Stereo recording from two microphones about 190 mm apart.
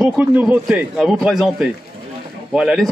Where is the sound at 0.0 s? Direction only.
10° right (ahead or behind).